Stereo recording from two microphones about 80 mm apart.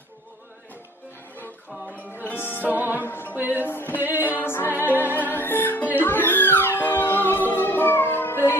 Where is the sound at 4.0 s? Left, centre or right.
Right.